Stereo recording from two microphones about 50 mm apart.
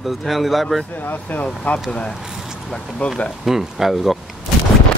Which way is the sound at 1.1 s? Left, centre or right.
Left.